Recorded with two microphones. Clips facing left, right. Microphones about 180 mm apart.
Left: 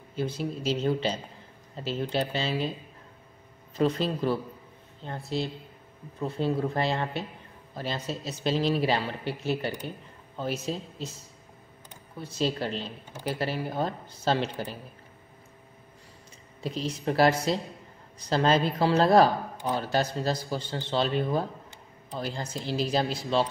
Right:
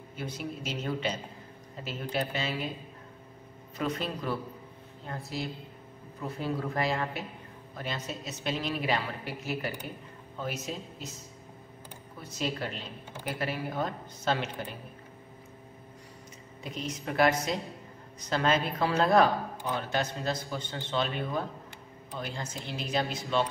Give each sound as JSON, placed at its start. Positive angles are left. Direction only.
{"t": 0.1, "sound": "speech", "side_deg": 30}
{"t": 3.7, "sound": "speech", "side_deg": 30}
{"t": 12.2, "sound": "speech", "side_deg": 30}
{"t": 16.6, "sound": "speech", "side_deg": 30}